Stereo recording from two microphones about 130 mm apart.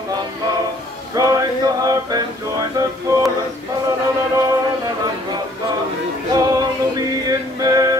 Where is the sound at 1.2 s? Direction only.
30° right (ahead or behind).